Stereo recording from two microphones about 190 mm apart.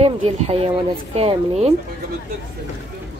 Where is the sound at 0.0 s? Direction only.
30° right (ahead or behind).